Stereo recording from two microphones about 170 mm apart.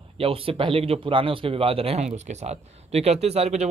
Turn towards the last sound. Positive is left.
turn(degrees=-40)  # may be behind; listen again after turning